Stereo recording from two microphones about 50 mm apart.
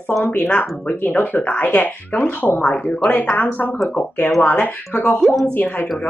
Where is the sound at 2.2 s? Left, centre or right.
Left.